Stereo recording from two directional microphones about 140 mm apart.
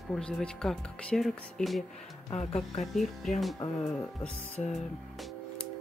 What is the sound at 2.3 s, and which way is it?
Speech, 50° left (ahead or behind).